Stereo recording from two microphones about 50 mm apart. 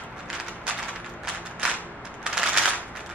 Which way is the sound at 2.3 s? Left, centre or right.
Centre.